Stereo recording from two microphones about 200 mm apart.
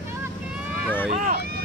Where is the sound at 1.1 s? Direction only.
45° right (ahead or behind).